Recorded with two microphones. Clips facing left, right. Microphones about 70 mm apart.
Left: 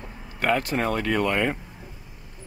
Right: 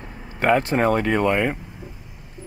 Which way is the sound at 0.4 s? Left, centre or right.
Right.